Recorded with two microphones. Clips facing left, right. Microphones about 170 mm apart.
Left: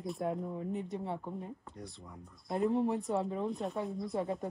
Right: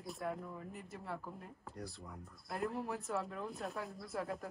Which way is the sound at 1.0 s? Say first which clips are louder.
Left 6 dB; 30° left (ahead or behind).